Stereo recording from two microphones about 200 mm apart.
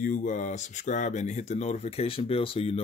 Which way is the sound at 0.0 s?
40° left (ahead or behind).